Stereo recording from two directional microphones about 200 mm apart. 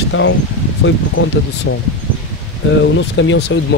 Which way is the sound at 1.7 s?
75° left (ahead or behind).